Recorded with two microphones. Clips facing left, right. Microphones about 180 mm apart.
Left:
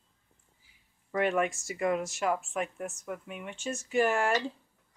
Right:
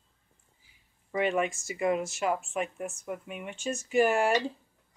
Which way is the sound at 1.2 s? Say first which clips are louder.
Even; centre (ahead or behind).